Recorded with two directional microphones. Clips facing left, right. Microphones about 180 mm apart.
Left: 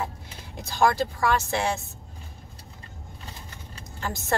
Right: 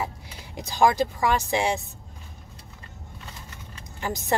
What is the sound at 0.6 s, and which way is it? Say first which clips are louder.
A woman's voice: right 2 dB; 15° right (ahead or behind).